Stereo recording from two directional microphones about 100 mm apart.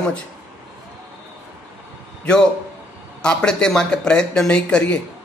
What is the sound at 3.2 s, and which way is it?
A man's voice, 10° left (ahead or behind).